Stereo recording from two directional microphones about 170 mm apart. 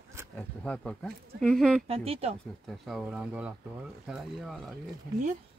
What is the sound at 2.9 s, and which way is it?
Speech, 5° right (ahead or behind).